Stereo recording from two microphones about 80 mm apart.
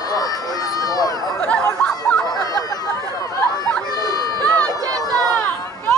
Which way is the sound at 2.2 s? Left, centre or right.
Left.